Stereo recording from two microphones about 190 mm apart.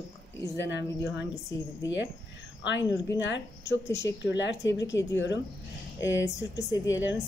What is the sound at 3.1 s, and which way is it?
Speech, 70° left (ahead or behind).